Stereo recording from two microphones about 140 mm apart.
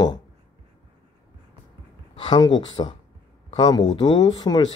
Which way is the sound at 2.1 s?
30° left (ahead or behind).